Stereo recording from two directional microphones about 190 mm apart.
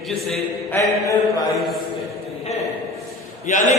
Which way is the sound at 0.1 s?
Centre (ahead or behind).